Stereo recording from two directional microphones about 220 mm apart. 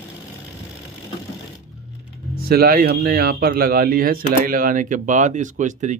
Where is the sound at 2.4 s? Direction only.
45° right (ahead or behind).